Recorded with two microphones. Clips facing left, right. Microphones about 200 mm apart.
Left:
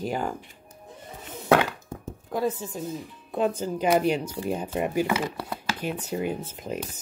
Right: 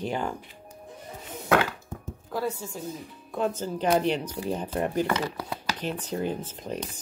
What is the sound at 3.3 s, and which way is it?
Speech, 15° left (ahead or behind).